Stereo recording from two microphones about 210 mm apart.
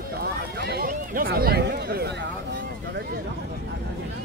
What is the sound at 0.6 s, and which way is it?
Speech, 45° right (ahead or behind).